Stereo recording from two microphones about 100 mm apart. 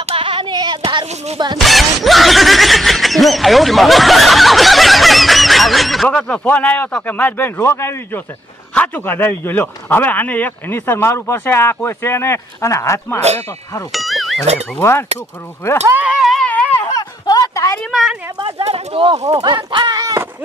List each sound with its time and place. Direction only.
0.0 s child singing: 65° right (ahead or behind); by 1.0 s 50° right (ahead or behind)
1.6 s snicker: centre (ahead or behind)
6.0 s speech: 10° left (ahead or behind); by 8.2 s 25° left (ahead or behind)
8.7 s a man's voice: 15° left (ahead or behind)
13.9 s music: centre (ahead or behind)
14.8 s a man's voice: 25° left (ahead or behind)
15.9 s speech: 15° right (ahead or behind)
16.2 s a sound: centre (ahead or behind)
16.7 s a sound: 35° left (ahead or behind)
18.4 s speech: 80° right
19.4 s speech: 50° right (ahead or behind)
20.0 s a sound: 35° right (ahead or behind)